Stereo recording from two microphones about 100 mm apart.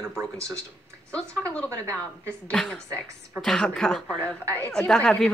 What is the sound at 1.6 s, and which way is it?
Speech, 30° right (ahead or behind).